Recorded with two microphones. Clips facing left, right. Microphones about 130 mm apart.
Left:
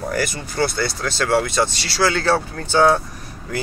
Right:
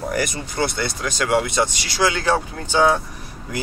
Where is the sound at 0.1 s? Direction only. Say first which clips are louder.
Even; 20° right (ahead or behind).